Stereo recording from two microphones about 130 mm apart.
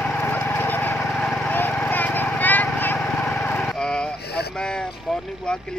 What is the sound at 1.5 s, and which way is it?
Vehicle, 10° left (ahead or behind).